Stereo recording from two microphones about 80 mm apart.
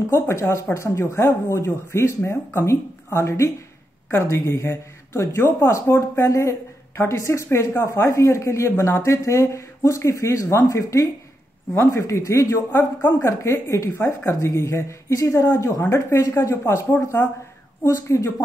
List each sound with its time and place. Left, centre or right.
0.1 s speech: left
13.8 s speech: left